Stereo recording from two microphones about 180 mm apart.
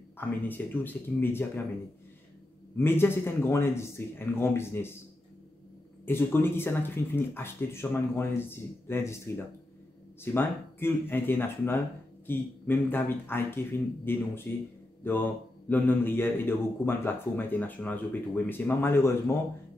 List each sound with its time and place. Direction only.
0.5 s a man's voice: 10° left (ahead or behind)
2.8 s a man's voice: 10° left (ahead or behind)
6.0 s a man's voice: 10° left (ahead or behind)
15.7 s a man's voice: 10° left (ahead or behind)